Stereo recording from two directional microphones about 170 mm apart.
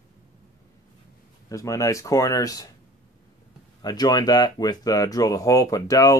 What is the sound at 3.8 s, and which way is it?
Speech, 25° left (ahead or behind).